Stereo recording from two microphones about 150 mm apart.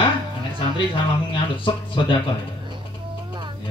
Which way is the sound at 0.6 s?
35° left (ahead or behind).